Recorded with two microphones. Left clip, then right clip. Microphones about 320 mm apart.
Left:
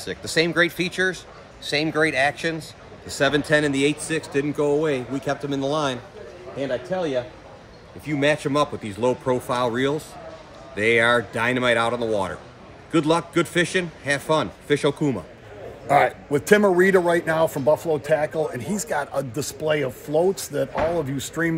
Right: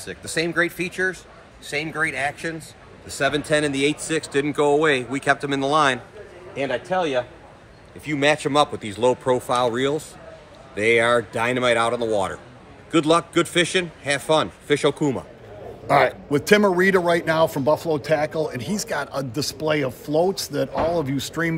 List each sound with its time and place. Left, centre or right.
0.0 s a man's voice: centre
8.0 s a man's voice: centre